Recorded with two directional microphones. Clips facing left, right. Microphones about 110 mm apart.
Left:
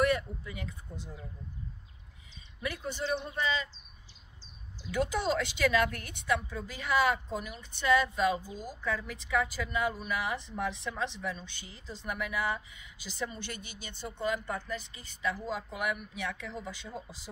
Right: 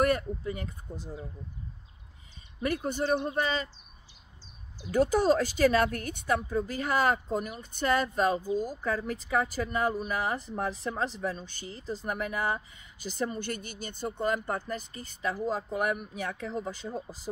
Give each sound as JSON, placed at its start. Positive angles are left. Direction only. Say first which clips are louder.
{"t": 0.0, "sound": "speech", "louder": "right 2 dB", "side_deg": -45}
{"t": 2.6, "sound": "a woman's voice", "louder": "right 6 dB", "side_deg": -50}
{"t": 4.9, "sound": "a woman's voice", "louder": "right 6 dB", "side_deg": -40}